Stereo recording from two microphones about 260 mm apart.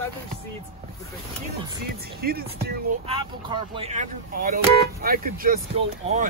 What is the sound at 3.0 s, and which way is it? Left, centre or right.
Speech, right.